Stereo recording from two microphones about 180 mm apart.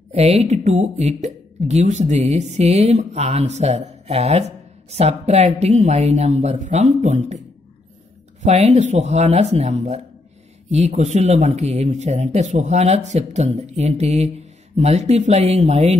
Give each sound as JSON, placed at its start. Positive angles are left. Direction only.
{"t": 0.1, "sound": "speech", "side_deg": -35}
{"t": 8.4, "sound": "speech", "side_deg": -35}